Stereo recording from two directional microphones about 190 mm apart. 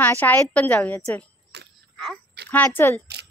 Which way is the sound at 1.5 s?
60° right (ahead or behind).